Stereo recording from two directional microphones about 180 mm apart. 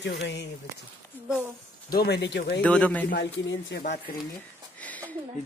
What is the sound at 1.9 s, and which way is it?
Speech, 65° left (ahead or behind).